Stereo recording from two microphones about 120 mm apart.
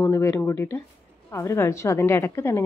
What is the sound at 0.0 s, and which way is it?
A woman's voice, 25° left (ahead or behind).